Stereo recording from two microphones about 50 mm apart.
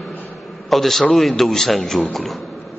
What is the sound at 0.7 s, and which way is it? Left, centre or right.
A man's voice, centre.